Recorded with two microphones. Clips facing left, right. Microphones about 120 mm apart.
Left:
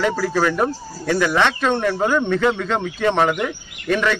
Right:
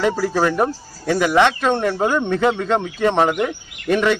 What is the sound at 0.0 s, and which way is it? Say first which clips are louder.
Speech: right 1 dB; 15° right (ahead or behind).